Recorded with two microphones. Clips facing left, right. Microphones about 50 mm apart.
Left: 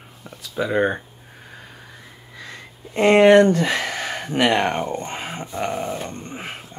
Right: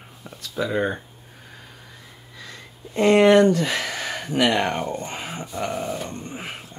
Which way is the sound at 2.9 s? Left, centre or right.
Left.